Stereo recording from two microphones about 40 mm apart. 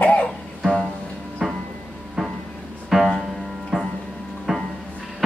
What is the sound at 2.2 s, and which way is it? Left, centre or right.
Music, centre.